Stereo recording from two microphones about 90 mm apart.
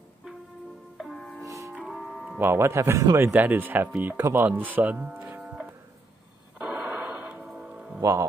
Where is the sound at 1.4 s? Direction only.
35° right (ahead or behind).